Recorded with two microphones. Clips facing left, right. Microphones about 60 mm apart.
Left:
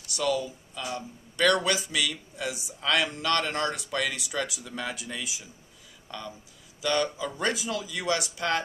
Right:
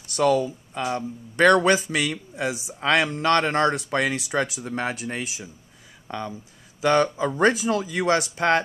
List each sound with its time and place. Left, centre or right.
0.1 s speech: right